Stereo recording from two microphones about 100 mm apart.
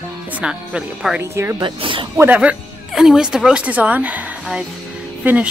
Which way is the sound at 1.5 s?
55° right (ahead or behind).